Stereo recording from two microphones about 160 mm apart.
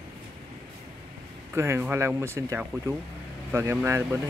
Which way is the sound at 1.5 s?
15° right (ahead or behind).